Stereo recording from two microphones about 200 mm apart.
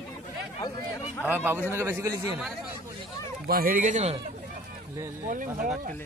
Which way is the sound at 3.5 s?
45° right (ahead or behind).